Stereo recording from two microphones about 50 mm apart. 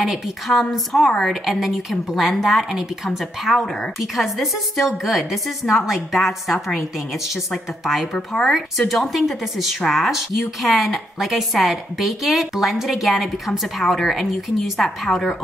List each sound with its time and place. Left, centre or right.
0.0 s a woman's voice: centre
7.8 s a woman's voice: centre
15.1 s a woman's voice: left